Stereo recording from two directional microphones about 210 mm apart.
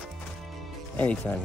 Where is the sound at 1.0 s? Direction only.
5° left (ahead or behind).